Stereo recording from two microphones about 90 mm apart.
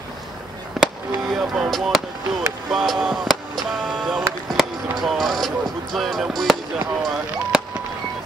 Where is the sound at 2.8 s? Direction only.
5° right (ahead or behind).